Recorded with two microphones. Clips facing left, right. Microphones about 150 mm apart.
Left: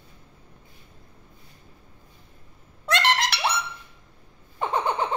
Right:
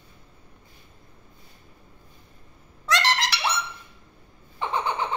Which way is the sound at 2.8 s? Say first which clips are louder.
Left 1 dB; 55° left (ahead or behind).